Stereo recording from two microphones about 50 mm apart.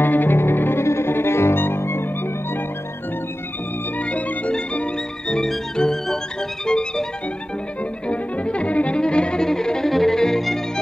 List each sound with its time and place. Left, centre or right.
0.0 s music: left
4.0 s music: left
5.3 s music: centre
8.1 s music: left; by 10.6 s centre